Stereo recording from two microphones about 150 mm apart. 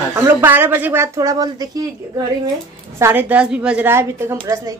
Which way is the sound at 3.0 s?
10° right (ahead or behind).